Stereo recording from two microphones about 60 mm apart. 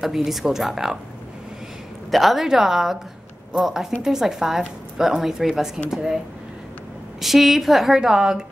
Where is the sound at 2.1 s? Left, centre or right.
Centre.